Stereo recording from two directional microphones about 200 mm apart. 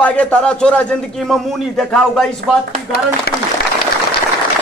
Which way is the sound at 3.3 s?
50° left (ahead or behind).